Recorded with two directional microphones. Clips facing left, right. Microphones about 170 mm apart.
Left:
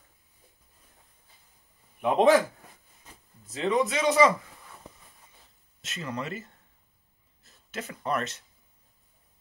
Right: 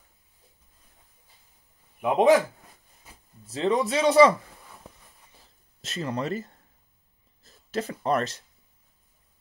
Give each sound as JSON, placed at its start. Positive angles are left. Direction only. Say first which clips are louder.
{"t": 2.0, "sound": "speech", "louder": "right 1 dB", "side_deg": -10}
{"t": 3.1, "sound": "a sound", "louder": "even", "side_deg": -10}
{"t": 3.4, "sound": "a man's voice", "louder": "right 2 dB", "side_deg": -30}
{"t": 5.8, "sound": "a man's voice", "louder": "right 5 dB", "side_deg": -35}